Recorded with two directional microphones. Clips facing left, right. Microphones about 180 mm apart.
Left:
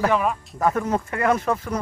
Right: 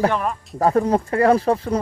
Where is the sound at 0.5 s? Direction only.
35° right (ahead or behind).